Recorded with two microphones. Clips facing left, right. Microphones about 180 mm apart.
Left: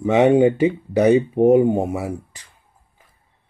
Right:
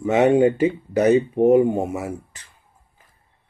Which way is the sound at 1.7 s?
30° left (ahead or behind).